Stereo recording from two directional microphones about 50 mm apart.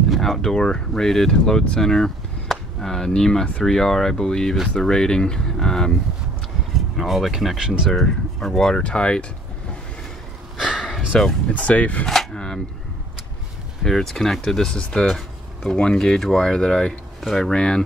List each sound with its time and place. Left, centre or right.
0.1 s speech: centre
1.8 s vehicle: centre
2.8 s speech: centre
7.0 s speech: centre
7.9 s speech: centre
8.7 s speech: left
10.6 s a sound: centre
11.5 s speech: left
12.1 s a sound: centre
13.8 s speech: centre
16.2 s speech: centre